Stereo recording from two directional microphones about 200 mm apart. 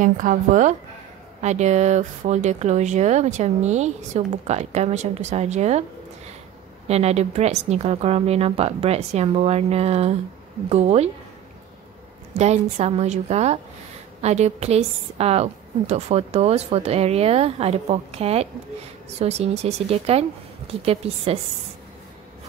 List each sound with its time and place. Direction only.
0.0 s speech: 40° right (ahead or behind)
12.4 s speech: 35° right (ahead or behind)